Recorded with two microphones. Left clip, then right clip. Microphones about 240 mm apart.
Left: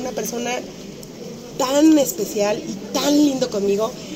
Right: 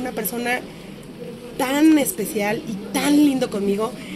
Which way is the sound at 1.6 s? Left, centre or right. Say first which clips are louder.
Left 2 dB; right.